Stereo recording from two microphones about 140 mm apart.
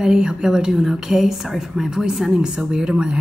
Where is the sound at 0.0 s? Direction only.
5° right (ahead or behind).